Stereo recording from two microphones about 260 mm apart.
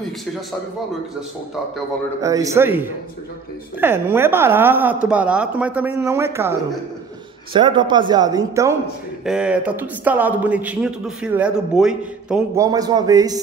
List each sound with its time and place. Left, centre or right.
2.2 s speech: centre
12.6 s speech: centre